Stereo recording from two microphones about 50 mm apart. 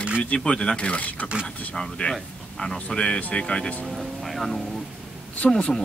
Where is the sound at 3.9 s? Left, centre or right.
Centre.